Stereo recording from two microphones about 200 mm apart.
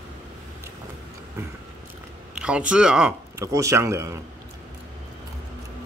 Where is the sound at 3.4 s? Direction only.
15° right (ahead or behind).